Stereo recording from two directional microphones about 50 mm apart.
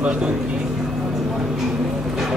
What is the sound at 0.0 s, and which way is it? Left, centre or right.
Speech, right.